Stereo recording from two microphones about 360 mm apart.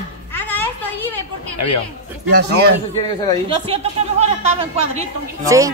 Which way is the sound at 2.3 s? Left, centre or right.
Right.